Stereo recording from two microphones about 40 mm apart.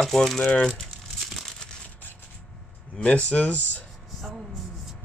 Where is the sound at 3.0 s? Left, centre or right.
Left.